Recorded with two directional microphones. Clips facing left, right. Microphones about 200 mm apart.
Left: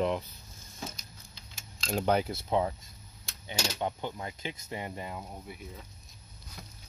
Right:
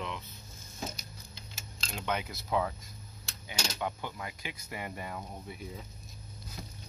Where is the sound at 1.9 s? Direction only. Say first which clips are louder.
Left 8 dB; 40° left (ahead or behind); by 5.2 s 20° left (ahead or behind).